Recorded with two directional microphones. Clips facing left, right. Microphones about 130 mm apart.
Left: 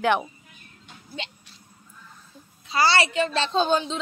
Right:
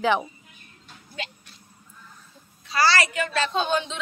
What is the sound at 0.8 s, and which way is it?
Music, 25° left (ahead or behind).